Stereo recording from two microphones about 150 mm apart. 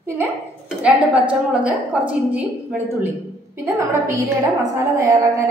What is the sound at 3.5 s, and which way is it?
A woman's voice, 20° right (ahead or behind).